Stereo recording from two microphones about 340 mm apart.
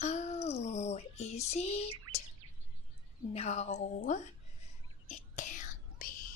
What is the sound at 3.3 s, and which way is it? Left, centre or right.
Speech, centre.